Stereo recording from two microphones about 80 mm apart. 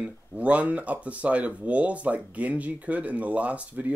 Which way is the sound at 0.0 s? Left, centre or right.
Centre.